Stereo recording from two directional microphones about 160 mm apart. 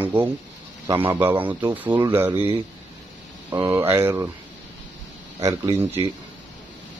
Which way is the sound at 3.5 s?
30° right (ahead or behind).